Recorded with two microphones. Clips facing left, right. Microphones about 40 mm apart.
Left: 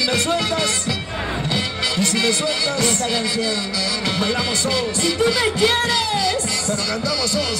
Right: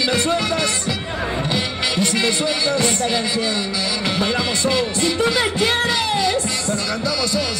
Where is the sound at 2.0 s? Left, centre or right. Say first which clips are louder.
Even; right.